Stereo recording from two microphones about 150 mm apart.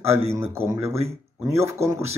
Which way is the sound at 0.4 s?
20° right (ahead or behind).